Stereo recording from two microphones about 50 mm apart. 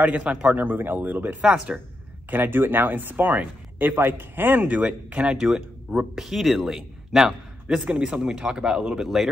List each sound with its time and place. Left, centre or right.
0.0 s a man's voice: right
0.6 s speech: right
1.4 s a man's voice: right
2.3 s speech: right; by 6.0 s centre
6.1 s speech: centre
7.6 s a man's voice: right
9.0 s speech: centre